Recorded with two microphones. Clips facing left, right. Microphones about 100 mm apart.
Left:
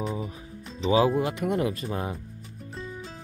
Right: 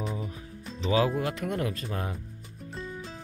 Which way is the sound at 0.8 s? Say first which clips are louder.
Left 4 dB; 20° left (ahead or behind).